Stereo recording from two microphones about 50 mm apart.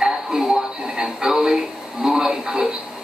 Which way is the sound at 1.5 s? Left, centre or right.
Centre.